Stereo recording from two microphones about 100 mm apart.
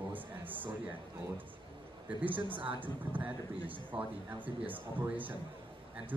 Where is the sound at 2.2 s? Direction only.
15° right (ahead or behind).